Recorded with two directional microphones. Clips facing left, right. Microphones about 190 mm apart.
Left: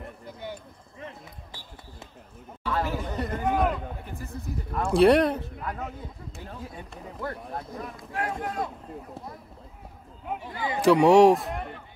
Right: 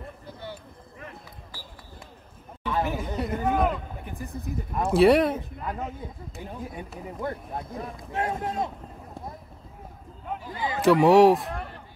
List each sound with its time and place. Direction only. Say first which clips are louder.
0.9 s basketball bounce: left 3 dB; 25° left (ahead or behind)
2.6 s chatter: right 1 dB; 15° right (ahead or behind)
4.1 s speech: right 5 dB; 15° right (ahead or behind)
4.9 s a man's voice: even; centre (ahead or behind)
6.4 s speech: right 4 dB; 15° right (ahead or behind)
10.8 s a man's voice: even; centre (ahead or behind)